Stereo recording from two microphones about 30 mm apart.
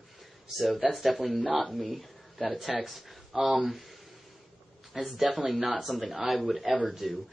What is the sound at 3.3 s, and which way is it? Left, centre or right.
Speech, centre.